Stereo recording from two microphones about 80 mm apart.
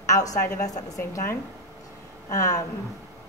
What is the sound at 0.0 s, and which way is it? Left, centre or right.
A woman's voice, left.